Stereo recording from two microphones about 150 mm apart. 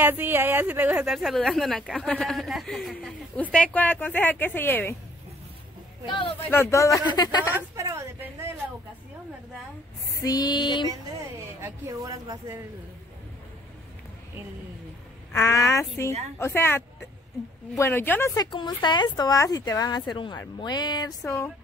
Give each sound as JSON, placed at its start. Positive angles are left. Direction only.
{"t": 0.0, "sound": "a woman's voice", "side_deg": -15}
{"t": 3.5, "sound": "a woman's voice", "side_deg": 10}
{"t": 6.0, "sound": "speech", "side_deg": 35}
{"t": 6.5, "sound": "speech", "side_deg": 20}
{"t": 7.5, "sound": "a woman's voice", "side_deg": -20}
{"t": 10.2, "sound": "speech", "side_deg": 25}
{"t": 11.6, "sound": "a woman's voice", "side_deg": -25}
{"t": 15.3, "sound": "a woman's voice", "side_deg": 20}
{"t": 18.5, "sound": "speech", "side_deg": 30}